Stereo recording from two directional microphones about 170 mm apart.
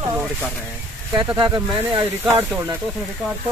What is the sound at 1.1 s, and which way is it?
Speech, 25° right (ahead or behind).